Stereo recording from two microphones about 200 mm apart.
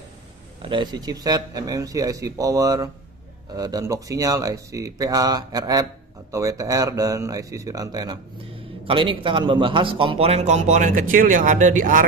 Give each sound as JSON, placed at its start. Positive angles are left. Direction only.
{"t": 0.6, "sound": "a man's voice", "side_deg": -25}